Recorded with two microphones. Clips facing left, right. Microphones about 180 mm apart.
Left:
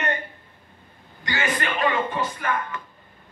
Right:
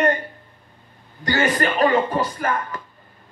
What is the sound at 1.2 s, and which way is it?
Speech, 40° right (ahead or behind).